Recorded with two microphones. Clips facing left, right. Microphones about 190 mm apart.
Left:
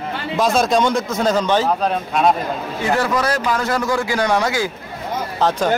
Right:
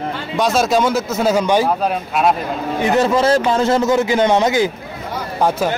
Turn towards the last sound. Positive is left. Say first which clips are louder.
# right 4 dB
turn(degrees=-20)  # may be behind; listen again after turning